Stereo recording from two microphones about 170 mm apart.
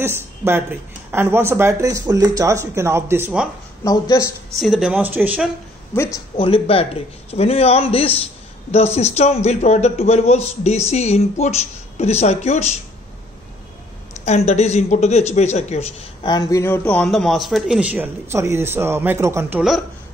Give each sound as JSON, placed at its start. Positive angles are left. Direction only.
{"t": 0.0, "sound": "speech", "side_deg": -15}
{"t": 3.8, "sound": "speech", "side_deg": 20}
{"t": 4.6, "sound": "speech", "side_deg": -5}
{"t": 5.9, "sound": "a man's voice", "side_deg": 25}
{"t": 14.2, "sound": "speech", "side_deg": 40}